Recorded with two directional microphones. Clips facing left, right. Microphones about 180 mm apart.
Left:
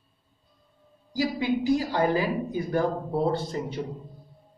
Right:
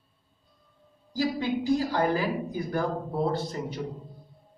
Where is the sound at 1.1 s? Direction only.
15° left (ahead or behind).